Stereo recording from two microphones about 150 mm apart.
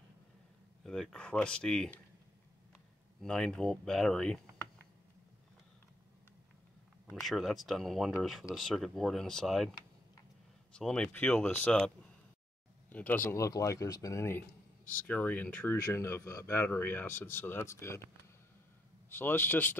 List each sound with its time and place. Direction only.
0.8 s speech: 5° left (ahead or behind)
3.2 s speech: 5° left (ahead or behind)
7.1 s speech: centre (ahead or behind)
10.7 s speech: 5° left (ahead or behind)
12.9 s speech: 10° left (ahead or behind)
19.0 s speech: 15° left (ahead or behind)